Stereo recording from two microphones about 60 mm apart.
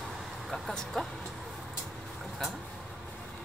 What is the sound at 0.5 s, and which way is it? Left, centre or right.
Speech, centre.